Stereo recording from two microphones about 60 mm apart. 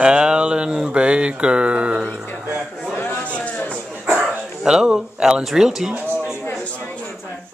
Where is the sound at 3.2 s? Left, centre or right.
Left.